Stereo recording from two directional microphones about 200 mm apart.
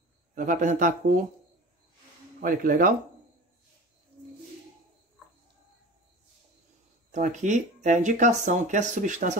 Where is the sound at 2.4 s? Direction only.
45° right (ahead or behind).